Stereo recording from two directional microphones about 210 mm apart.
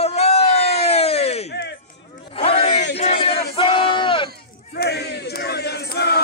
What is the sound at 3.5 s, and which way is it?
Battle cry, 25° left (ahead or behind).